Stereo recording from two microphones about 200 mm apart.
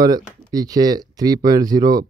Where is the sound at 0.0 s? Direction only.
20° right (ahead or behind).